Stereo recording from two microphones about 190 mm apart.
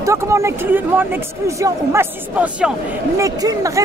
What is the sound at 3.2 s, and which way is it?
Speech, 20° right (ahead or behind).